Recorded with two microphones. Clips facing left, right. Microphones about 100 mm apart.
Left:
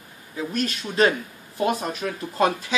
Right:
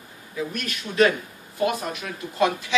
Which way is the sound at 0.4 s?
30° left (ahead or behind).